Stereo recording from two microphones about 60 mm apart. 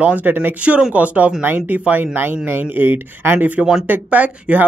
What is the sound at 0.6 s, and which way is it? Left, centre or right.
Speech, right.